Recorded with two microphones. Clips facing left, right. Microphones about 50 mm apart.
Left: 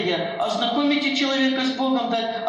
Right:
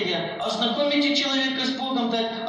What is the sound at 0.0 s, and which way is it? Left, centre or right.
A man's voice, left.